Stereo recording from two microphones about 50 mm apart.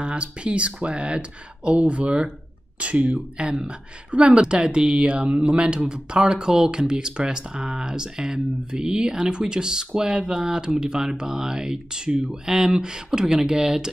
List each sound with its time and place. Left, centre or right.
0.0 s speech: right